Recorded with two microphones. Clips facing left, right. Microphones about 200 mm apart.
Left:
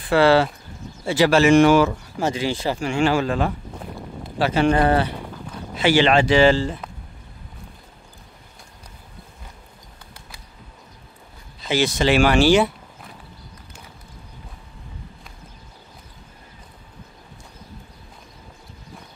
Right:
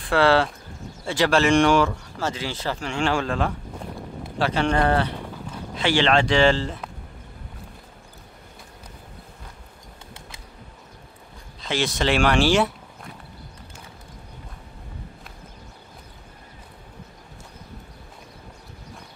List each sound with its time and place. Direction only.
0.0 s speech: 5° left (ahead or behind)
11.6 s speech: 5° left (ahead or behind)